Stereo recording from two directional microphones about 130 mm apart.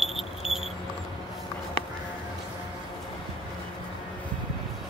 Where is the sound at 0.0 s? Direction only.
Centre (ahead or behind).